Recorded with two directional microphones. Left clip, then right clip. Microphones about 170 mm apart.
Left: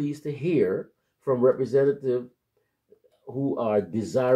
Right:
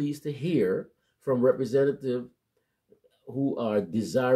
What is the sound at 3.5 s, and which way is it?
Speech, 25° right (ahead or behind).